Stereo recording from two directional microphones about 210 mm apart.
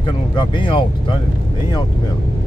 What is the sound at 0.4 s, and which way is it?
Speech, 20° left (ahead or behind).